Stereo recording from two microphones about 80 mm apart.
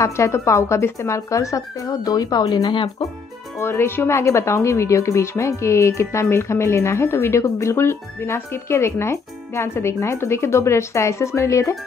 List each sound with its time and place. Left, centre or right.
0.0 s speech: left
3.5 s speech: left